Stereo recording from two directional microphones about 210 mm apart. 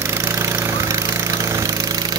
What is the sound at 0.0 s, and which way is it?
Jackhammer, 15° right (ahead or behind).